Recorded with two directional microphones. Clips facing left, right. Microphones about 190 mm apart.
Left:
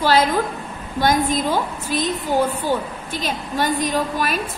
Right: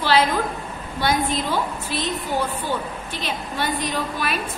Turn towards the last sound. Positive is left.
turn(degrees=45)  # may be behind; listen again after turning